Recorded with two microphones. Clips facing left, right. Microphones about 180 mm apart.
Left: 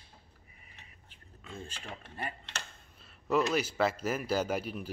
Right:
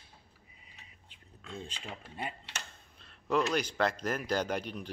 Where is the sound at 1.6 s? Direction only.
15° right (ahead or behind).